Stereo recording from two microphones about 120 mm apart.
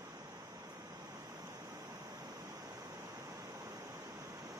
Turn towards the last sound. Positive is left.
turn(degrees=-30)  # may be behind; listen again after turning